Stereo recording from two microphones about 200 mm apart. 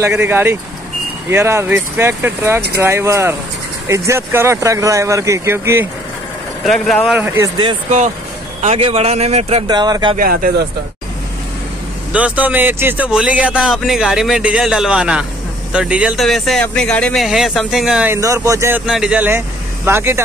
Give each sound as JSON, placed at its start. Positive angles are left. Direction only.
{"t": 0.0, "sound": "speech", "side_deg": -10}
{"t": 6.6, "sound": "speech", "side_deg": 0}
{"t": 7.2, "sound": "speech", "side_deg": -10}
{"t": 8.5, "sound": "speech", "side_deg": -30}
{"t": 9.7, "sound": "speech", "side_deg": -20}
{"t": 10.1, "sound": "speech", "side_deg": -45}
{"t": 12.1, "sound": "speech", "side_deg": -5}
{"t": 18.9, "sound": "speech", "side_deg": -5}